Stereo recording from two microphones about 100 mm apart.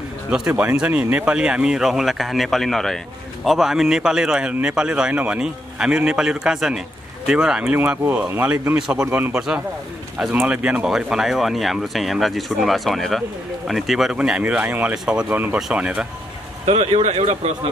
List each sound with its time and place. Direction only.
0.6 s speech: 15° right (ahead or behind)
16.6 s speech: 90° right